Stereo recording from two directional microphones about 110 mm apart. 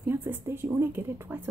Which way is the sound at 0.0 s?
20° right (ahead or behind).